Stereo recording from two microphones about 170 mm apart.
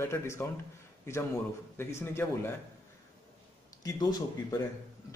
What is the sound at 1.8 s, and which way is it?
Speech, 15° left (ahead or behind).